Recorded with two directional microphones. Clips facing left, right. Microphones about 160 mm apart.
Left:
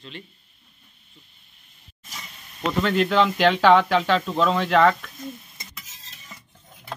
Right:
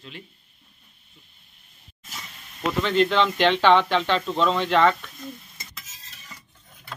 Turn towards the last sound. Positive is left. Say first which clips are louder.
# left 1 dB
turn(degrees=5)  # may be behind; listen again after turning